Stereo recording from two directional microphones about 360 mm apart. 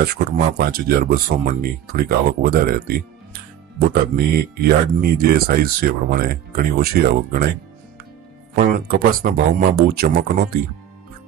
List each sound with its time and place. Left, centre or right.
0.0 s speech: right
3.9 s speech: right
8.5 s speech: right